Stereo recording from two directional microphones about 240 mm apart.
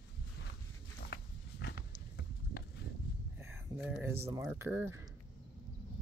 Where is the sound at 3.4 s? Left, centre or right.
Centre.